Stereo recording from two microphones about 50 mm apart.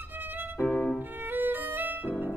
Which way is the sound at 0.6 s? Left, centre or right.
Left.